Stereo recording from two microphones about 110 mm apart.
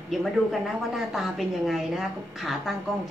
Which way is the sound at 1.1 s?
Centre (ahead or behind).